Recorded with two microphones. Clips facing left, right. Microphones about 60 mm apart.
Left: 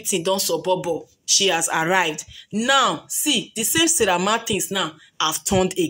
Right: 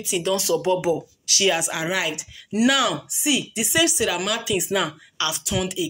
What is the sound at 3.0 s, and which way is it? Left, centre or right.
Speech, centre.